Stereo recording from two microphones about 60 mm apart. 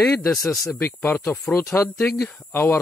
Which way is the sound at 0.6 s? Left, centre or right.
Left.